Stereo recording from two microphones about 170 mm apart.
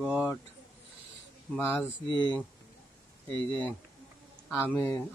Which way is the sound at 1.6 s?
15° left (ahead or behind).